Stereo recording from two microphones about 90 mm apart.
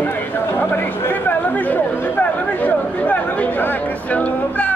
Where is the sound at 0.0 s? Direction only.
20° left (ahead or behind).